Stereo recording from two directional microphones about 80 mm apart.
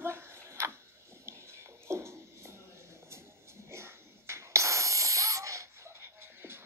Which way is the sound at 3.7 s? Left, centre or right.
Right.